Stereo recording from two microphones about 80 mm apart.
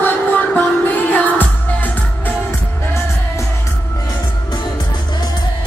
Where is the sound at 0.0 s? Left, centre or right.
Left.